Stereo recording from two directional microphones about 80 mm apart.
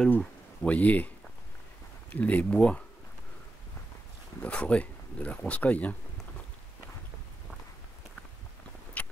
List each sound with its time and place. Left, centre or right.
0.1 s speech: centre
4.4 s speech: centre
9.0 s a sound: centre